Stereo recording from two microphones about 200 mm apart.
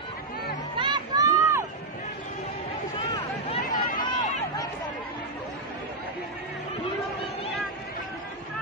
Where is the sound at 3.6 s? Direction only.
45° left (ahead or behind).